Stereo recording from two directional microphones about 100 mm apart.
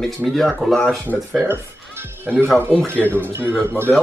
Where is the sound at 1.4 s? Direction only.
25° right (ahead or behind).